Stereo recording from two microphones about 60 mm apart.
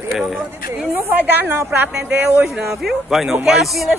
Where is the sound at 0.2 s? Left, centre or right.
Centre.